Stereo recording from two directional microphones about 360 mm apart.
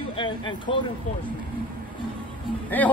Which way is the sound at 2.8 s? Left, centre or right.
Centre.